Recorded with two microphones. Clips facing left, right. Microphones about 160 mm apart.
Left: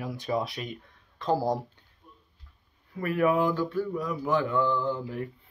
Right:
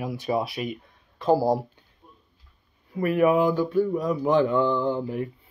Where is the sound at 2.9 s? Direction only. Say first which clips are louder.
Right 5 dB; 15° right (ahead or behind).